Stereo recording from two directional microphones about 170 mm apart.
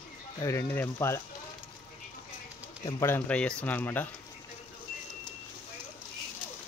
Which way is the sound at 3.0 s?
10° left (ahead or behind).